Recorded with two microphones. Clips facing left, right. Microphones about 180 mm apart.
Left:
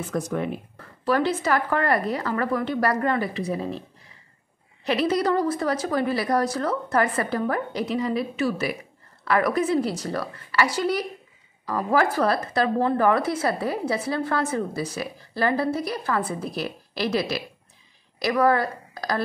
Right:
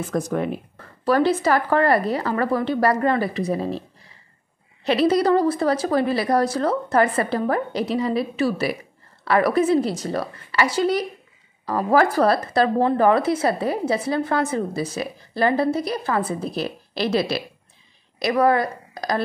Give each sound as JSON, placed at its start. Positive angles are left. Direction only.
{"t": 0.1, "sound": "a woman's voice", "side_deg": -40}
{"t": 4.8, "sound": "a woman's voice", "side_deg": -35}
{"t": 11.6, "sound": "a woman's voice", "side_deg": -35}